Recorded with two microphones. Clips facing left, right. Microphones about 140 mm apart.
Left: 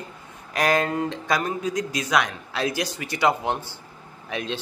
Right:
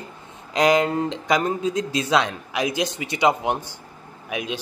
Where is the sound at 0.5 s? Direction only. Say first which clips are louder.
Right 4 dB; 20° right (ahead or behind).